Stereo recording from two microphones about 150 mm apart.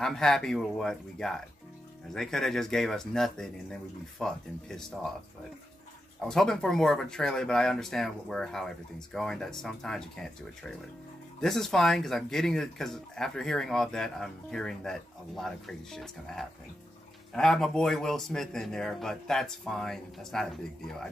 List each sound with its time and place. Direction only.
0.0 s speech: 5° left (ahead or behind)
6.2 s speech: 5° left (ahead or behind)
11.4 s speech: centre (ahead or behind)